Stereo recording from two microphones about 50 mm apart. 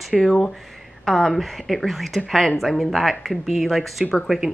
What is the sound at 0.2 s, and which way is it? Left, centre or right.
Speech, centre.